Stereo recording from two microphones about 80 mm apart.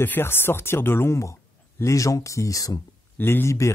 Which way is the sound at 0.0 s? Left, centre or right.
Left.